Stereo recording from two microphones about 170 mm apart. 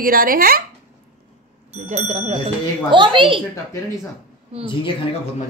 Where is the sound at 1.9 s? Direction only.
40° right (ahead or behind).